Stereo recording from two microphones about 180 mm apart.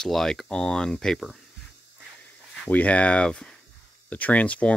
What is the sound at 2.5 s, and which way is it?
Speech, 5° left (ahead or behind).